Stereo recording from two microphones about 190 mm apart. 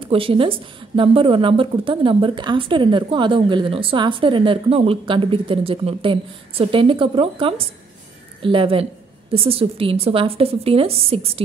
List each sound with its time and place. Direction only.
0.0 s a woman's voice: 30° right (ahead or behind)